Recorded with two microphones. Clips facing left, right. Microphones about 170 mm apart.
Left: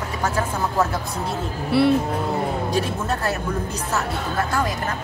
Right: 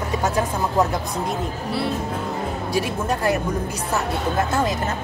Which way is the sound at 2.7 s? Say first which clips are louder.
Right 1 dB; 10° right (ahead or behind).